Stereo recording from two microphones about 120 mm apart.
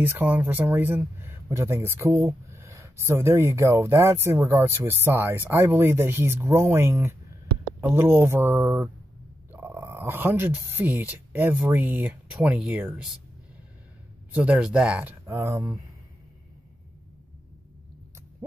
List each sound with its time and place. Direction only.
0.0 s speech: 15° right (ahead or behind)
8.5 s speech: 5° right (ahead or behind)
9.5 s speech: 20° right (ahead or behind)
14.3 s speech: 10° right (ahead or behind)
15.2 s speech: 20° right (ahead or behind)